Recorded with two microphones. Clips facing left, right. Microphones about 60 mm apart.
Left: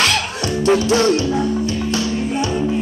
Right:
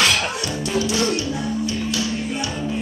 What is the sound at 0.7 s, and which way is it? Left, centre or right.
Music, left.